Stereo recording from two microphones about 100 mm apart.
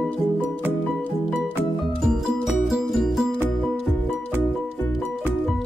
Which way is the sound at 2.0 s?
5° right (ahead or behind).